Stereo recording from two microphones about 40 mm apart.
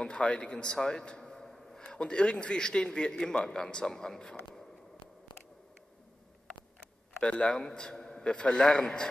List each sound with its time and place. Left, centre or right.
0.0 s a man's voice: left; by 1.8 s centre
1.8 s a man's voice: left
7.2 s a man's voice: left